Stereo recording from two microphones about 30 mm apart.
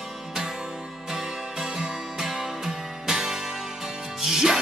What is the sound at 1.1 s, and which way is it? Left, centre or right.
Music, centre.